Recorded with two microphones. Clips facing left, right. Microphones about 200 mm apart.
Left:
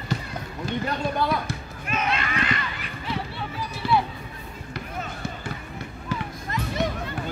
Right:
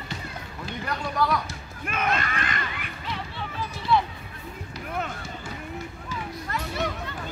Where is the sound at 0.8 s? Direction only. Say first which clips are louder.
Even; 25° left (ahead or behind).